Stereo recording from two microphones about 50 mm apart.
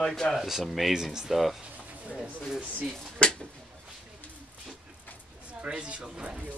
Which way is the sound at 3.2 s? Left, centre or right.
Centre.